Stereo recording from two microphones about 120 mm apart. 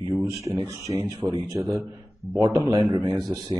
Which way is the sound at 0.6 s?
25° right (ahead or behind).